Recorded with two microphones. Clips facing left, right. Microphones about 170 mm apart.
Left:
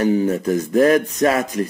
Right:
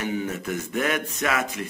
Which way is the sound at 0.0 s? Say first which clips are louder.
Left 11 dB; 35° left (ahead or behind).